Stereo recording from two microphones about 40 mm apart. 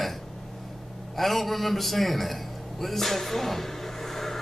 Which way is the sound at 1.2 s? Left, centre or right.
Centre.